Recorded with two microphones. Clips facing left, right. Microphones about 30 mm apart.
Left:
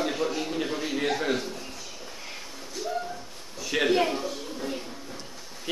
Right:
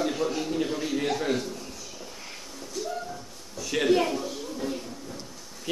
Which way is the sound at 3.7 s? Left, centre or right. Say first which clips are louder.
Even; centre.